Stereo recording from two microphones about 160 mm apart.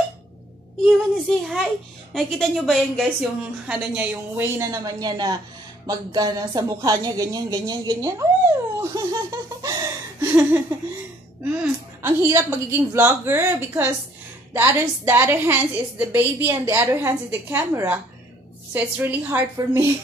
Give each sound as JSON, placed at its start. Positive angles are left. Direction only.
{"t": 0.8, "sound": "a woman's voice", "side_deg": 0}
{"t": 12.0, "sound": "a woman's voice", "side_deg": -20}